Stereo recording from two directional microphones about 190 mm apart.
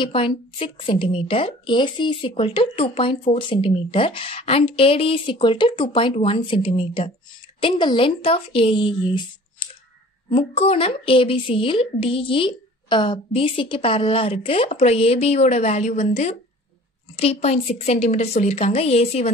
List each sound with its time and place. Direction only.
0.0 s a woman's voice: 30° left (ahead or behind)